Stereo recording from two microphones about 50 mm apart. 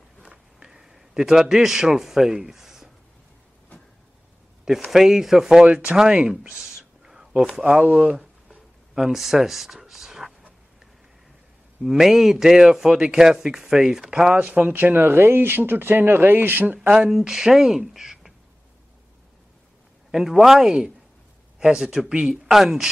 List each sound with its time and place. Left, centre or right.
0.2 s a sound: centre
4.9 s a man's voice: centre
5.7 s speech: right
6.7 s whispering: centre
7.8 s speech: right
8.9 s speech: centre
11.8 s a man's voice: centre
14.3 s speech: right
14.7 s speech: right
16.9 s a man's voice: centre
20.1 s a man's voice: centre